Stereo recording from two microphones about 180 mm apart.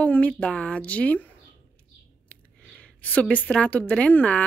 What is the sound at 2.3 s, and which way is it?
A woman's voice, 5° left (ahead or behind).